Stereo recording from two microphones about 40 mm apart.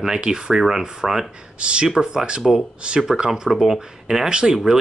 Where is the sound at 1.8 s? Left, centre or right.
Centre.